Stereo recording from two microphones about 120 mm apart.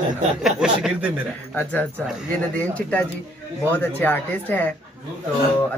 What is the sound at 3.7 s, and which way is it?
Speech, 15° left (ahead or behind).